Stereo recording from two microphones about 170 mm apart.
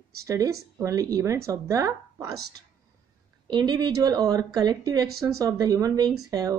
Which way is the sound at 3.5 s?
25° right (ahead or behind).